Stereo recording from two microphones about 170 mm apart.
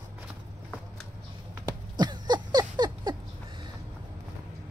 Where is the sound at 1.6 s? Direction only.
25° right (ahead or behind).